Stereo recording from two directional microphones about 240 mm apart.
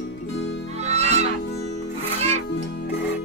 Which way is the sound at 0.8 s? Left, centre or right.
Right.